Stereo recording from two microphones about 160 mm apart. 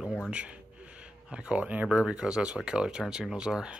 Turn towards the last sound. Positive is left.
turn(degrees=-5)  # may be behind; listen again after turning